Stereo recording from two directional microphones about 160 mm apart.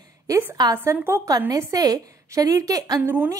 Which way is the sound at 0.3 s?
15° right (ahead or behind).